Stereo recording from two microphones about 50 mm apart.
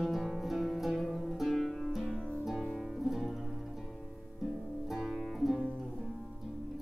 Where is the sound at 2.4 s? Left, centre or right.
Centre.